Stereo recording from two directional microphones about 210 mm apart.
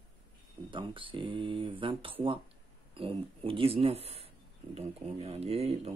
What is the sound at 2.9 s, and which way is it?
Speech, 25° right (ahead or behind).